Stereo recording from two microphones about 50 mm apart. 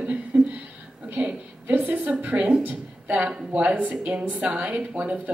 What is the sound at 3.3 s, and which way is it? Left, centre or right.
A woman's voice, right.